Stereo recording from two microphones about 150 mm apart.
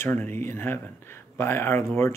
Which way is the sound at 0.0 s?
15° left (ahead or behind).